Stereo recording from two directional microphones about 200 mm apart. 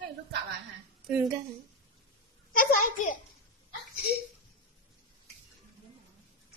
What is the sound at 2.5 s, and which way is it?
Speech, 40° left (ahead or behind).